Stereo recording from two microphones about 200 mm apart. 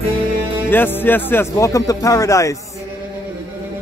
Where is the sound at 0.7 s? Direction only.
10° left (ahead or behind).